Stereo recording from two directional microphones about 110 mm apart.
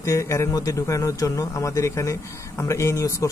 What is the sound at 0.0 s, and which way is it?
Speech, 30° left (ahead or behind).